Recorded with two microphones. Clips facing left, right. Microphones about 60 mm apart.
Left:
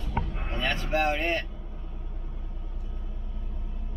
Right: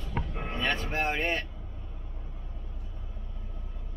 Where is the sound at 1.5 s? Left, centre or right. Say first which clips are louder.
Left 3 dB; centre.